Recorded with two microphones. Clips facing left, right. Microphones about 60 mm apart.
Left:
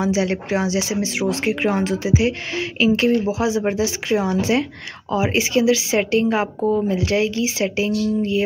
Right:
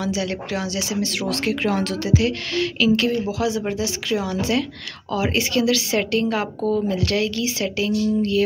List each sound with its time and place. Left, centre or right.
0.0 s a woman's voice: left